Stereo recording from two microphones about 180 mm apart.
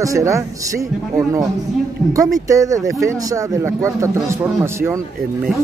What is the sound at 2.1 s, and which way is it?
A man's voice, 20° right (ahead or behind).